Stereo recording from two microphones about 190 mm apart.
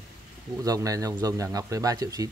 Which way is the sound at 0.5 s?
20° right (ahead or behind).